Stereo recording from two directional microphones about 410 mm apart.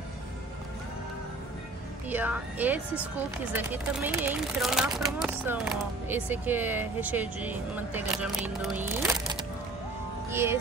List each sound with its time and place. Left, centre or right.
2.0 s speech: centre